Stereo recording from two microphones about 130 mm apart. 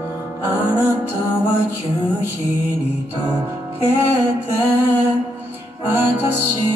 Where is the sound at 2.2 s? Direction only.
20° right (ahead or behind).